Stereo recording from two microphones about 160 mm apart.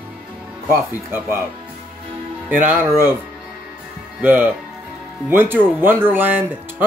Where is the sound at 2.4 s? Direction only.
10° right (ahead or behind).